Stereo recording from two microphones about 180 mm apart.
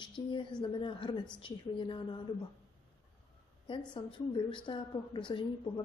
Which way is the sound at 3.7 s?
25° left (ahead or behind).